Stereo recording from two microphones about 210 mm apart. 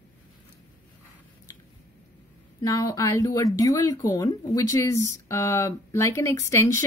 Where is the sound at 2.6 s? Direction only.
15° left (ahead or behind).